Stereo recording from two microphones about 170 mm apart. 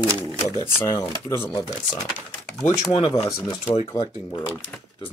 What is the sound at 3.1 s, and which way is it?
Speech, 20° left (ahead or behind).